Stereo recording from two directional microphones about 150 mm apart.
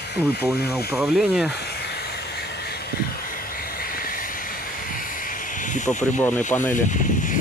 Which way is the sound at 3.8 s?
75° left (ahead or behind).